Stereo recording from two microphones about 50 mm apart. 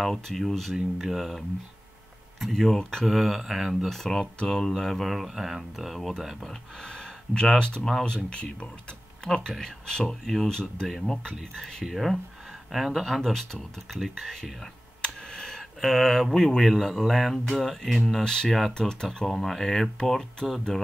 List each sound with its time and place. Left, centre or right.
0.1 s speech: centre
2.4 s speech: centre
3.1 s speech: centre
3.9 s speech: centre
15.0 s a sound: centre
16.6 s speech: centre